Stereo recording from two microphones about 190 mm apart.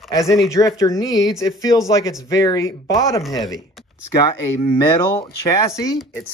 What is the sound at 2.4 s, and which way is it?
Speech, 20° left (ahead or behind).